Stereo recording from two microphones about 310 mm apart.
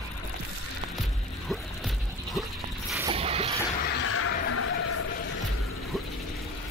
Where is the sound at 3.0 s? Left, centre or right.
Centre.